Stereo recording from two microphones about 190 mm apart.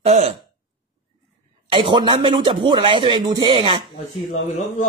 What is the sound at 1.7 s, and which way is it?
A man's voice, 25° right (ahead or behind).